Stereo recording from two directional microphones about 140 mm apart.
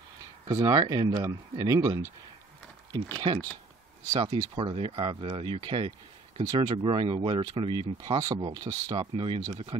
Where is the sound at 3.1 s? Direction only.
35° right (ahead or behind).